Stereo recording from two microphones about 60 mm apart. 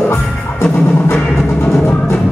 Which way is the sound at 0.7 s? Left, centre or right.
Left.